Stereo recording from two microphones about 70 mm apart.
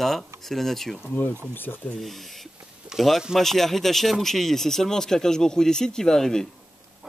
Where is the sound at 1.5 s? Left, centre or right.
Left.